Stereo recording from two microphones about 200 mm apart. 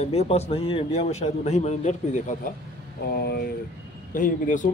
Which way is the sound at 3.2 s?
50° left (ahead or behind).